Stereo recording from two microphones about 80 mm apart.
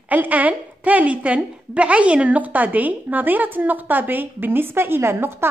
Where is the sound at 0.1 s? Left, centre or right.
Right.